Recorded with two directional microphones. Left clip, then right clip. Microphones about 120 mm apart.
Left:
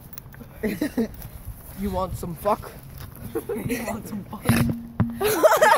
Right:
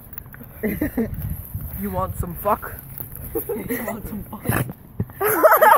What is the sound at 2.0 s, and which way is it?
Speech, 5° left (ahead or behind).